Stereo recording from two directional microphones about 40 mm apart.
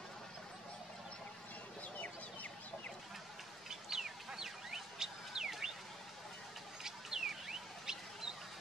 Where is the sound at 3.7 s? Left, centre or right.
Centre.